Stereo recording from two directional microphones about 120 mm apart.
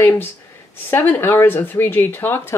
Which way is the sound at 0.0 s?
15° left (ahead or behind).